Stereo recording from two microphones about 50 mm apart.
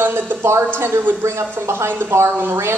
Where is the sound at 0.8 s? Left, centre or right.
Right.